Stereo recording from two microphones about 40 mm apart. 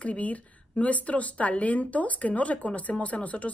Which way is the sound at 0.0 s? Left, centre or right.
Left.